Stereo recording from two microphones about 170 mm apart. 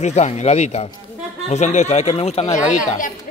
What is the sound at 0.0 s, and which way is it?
Speech, 40° left (ahead or behind).